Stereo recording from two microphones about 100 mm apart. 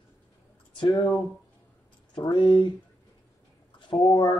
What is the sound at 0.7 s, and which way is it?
Speech, 40° left (ahead or behind).